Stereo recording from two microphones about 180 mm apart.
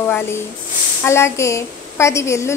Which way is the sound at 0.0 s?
15° left (ahead or behind).